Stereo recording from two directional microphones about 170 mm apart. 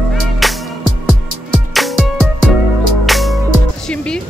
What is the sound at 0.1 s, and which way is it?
Music, centre (ahead or behind).